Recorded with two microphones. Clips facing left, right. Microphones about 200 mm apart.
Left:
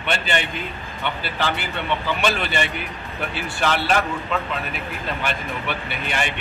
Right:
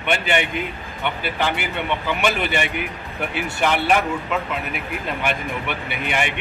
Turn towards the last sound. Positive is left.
turn(degrees=-15)  # may be behind; listen again after turning